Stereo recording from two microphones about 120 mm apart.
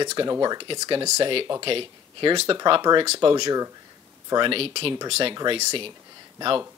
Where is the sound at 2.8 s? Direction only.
35° right (ahead or behind).